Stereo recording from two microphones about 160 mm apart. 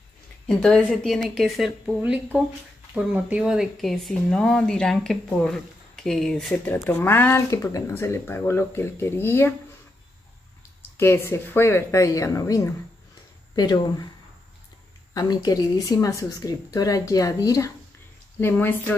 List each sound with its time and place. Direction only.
0.5 s speech: 5° left (ahead or behind)
11.0 s speech: 15° left (ahead or behind)
15.1 s speech: 25° left (ahead or behind)